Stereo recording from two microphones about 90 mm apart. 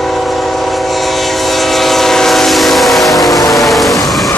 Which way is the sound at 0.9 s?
Centre (ahead or behind).